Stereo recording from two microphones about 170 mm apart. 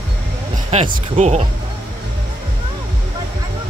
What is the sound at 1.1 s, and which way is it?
Speech, 40° right (ahead or behind).